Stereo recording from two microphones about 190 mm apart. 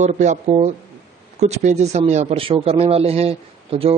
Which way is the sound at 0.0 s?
40° right (ahead or behind).